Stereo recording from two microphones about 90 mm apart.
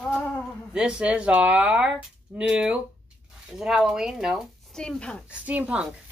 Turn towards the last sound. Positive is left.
turn(degrees=-15)  # may be behind; listen again after turning